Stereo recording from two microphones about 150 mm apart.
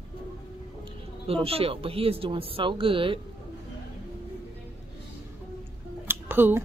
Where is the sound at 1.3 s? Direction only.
40° right (ahead or behind).